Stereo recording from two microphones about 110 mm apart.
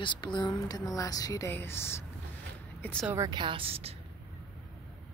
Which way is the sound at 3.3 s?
45° right (ahead or behind).